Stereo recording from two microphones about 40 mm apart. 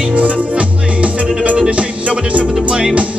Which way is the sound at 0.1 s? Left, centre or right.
Right.